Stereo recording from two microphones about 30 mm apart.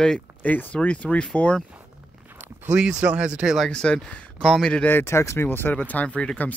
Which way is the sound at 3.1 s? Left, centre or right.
Right.